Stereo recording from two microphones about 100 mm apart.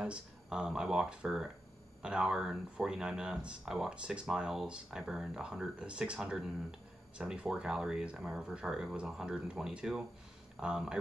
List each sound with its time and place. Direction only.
0.0 s speech: 10° right (ahead or behind)